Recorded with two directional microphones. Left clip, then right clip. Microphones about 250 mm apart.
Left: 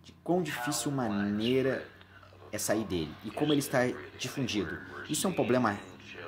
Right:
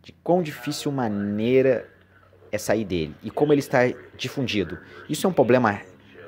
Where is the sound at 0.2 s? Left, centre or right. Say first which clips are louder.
Right 8 dB; right.